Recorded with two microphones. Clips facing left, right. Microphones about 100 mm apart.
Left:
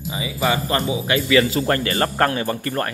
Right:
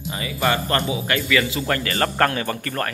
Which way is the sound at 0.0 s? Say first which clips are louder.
Left 1 dB; 5° left (ahead or behind).